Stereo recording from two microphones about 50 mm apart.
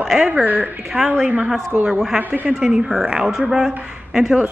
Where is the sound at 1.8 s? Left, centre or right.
Centre.